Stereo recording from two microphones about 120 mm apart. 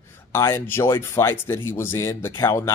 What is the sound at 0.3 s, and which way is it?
Speech, 20° left (ahead or behind).